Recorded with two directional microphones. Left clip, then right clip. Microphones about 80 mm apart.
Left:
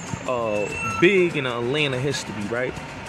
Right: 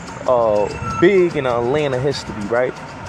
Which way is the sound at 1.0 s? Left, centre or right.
Right.